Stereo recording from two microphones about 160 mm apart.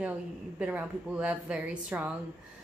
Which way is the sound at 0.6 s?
10° right (ahead or behind).